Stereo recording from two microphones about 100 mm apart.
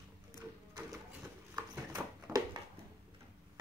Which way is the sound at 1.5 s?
40° right (ahead or behind).